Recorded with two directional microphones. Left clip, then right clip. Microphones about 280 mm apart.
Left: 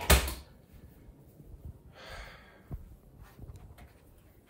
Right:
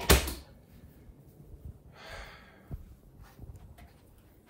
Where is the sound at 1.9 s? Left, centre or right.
Centre.